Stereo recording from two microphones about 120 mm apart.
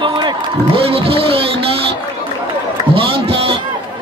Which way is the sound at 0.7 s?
50° right (ahead or behind).